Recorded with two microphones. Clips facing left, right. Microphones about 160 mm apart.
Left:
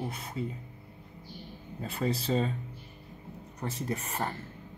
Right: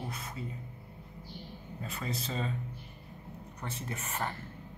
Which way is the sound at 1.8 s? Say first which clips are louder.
Left 7 dB; 30° left (ahead or behind).